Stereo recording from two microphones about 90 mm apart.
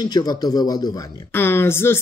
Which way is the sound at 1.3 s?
25° left (ahead or behind).